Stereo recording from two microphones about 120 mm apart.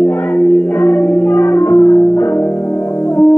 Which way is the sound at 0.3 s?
10° left (ahead or behind).